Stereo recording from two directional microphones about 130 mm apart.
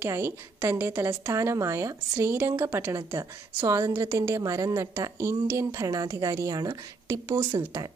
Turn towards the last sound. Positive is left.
turn(degrees=-25)  # may be behind; listen again after turning